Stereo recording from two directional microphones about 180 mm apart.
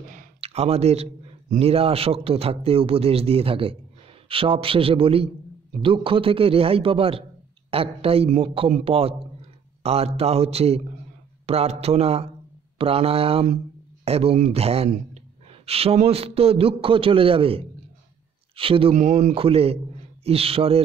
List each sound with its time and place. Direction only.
0.4 s a man's voice: 35° right (ahead or behind)